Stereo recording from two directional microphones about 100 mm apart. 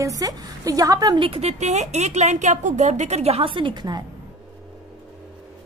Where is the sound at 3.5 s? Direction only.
50° right (ahead or behind).